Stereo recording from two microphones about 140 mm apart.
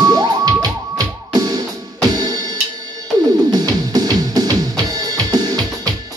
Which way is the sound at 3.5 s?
30° right (ahead or behind).